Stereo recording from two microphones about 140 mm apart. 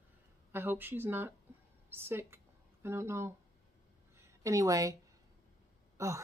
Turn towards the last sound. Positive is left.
turn(degrees=-20)  # may be behind; listen again after turning